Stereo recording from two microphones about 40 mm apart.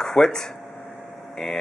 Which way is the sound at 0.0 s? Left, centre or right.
Centre.